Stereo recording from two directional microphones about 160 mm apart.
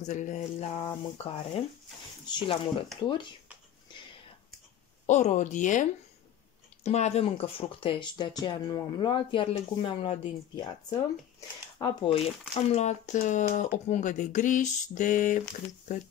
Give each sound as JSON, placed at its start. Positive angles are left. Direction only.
{"t": 0.0, "sound": "speech", "side_deg": 50}
{"t": 5.0, "sound": "speech", "side_deg": 45}